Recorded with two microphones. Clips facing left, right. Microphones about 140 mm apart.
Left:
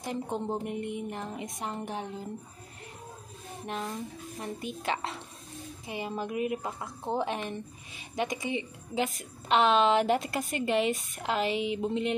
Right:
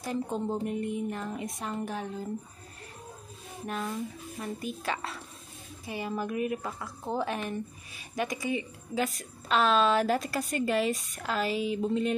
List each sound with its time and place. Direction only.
0.0 s a woman's voice: 20° left (ahead or behind)
3.6 s a woman's voice: 25° left (ahead or behind)
11.5 s speech: 35° right (ahead or behind)
11.8 s a woman's voice: 25° left (ahead or behind)